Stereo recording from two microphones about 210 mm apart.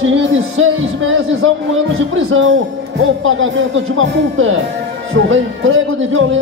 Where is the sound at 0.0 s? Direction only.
70° right (ahead or behind).